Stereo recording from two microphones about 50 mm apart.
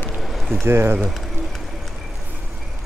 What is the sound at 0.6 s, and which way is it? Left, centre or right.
Speech, right.